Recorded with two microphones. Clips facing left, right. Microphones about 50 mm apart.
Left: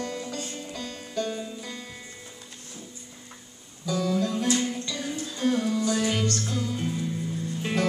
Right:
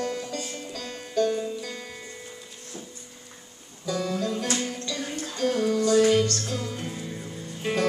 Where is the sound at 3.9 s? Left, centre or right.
Right.